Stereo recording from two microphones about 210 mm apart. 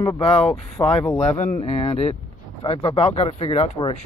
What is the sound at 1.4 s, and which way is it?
Speech, 30° left (ahead or behind).